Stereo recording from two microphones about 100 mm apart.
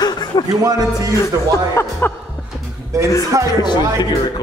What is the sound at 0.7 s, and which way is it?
Speech, 35° right (ahead or behind).